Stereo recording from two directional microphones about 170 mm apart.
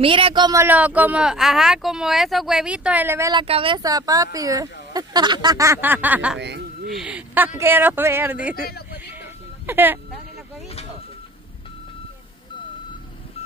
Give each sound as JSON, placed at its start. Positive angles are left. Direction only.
{"t": 0.0, "sound": "speech", "side_deg": -30}
{"t": 3.4, "sound": "speech", "side_deg": -30}
{"t": 8.5, "sound": "speech", "side_deg": 65}
{"t": 9.7, "sound": "speech", "side_deg": -10}